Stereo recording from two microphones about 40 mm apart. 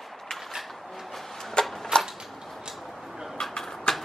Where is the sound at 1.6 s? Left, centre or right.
Centre.